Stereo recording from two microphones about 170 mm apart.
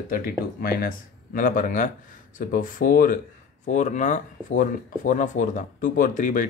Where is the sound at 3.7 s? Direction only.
45° left (ahead or behind).